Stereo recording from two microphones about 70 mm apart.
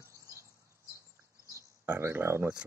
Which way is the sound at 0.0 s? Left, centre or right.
Right.